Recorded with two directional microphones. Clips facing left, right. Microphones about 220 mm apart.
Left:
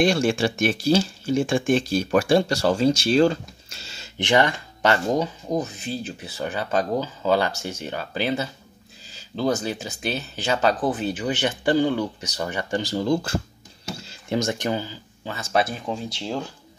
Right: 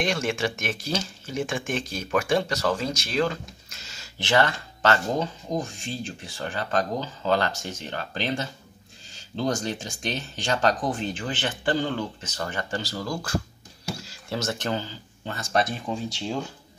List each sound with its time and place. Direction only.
0.0 s speech: 30° left (ahead or behind)
4.2 s speech: 15° left (ahead or behind)